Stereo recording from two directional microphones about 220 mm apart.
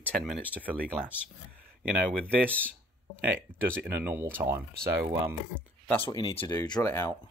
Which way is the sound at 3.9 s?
10° right (ahead or behind).